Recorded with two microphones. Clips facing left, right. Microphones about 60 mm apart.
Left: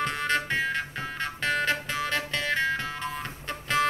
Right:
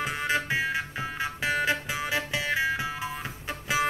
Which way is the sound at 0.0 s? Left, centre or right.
Centre.